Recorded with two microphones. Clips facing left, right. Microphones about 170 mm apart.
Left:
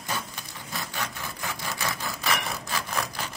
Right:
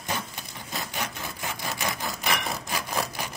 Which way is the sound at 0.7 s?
15° right (ahead or behind).